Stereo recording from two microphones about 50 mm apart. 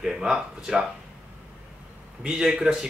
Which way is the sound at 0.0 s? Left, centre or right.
Centre.